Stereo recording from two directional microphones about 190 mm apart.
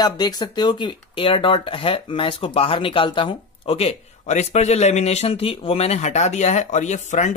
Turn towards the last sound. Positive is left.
turn(degrees=40)  # may be behind; listen again after turning